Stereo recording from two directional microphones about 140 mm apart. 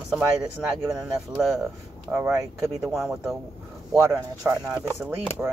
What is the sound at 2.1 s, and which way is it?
Speech, 15° right (ahead or behind).